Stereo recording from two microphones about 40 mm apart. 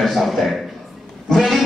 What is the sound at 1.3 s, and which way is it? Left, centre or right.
Speech, centre.